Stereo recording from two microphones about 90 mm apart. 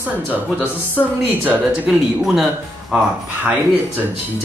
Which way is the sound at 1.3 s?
20° right (ahead or behind).